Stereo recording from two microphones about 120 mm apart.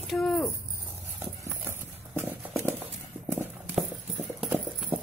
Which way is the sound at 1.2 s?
20° right (ahead or behind).